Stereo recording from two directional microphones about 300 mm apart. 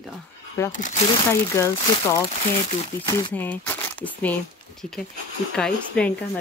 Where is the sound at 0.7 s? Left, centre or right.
Left.